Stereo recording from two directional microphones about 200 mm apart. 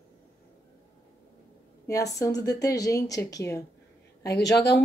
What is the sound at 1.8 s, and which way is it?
A woman's voice, 15° left (ahead or behind).